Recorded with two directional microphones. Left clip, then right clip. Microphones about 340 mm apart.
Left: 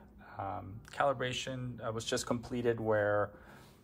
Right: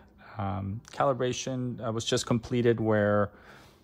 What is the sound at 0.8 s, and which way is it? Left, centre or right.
Speech, centre.